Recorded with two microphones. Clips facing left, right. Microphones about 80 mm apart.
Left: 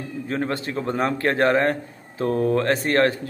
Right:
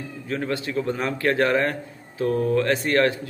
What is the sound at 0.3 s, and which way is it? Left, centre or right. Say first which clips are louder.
A man's voice: even; left.